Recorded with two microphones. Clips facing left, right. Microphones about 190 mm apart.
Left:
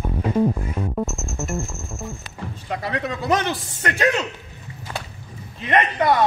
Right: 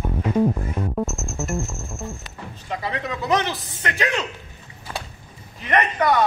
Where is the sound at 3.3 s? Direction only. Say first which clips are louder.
Even; 45° left (ahead or behind).